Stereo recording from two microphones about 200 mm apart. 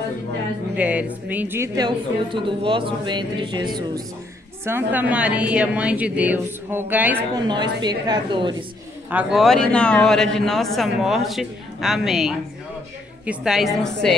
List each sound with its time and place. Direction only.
0.7 s a woman's voice: 5° right (ahead or behind)
1.9 s speech: 25° right (ahead or behind)
4.6 s a woman's voice: 10° right (ahead or behind)
7.4 s speech: 20° right (ahead or behind)
9.1 s speech: centre (ahead or behind)